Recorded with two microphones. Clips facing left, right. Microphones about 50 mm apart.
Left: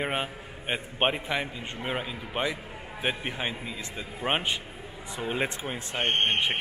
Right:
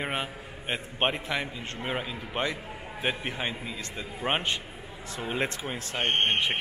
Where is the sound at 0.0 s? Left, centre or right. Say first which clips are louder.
Left 2 dB; centre.